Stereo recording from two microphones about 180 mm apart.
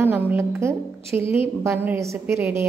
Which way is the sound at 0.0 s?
10° right (ahead or behind).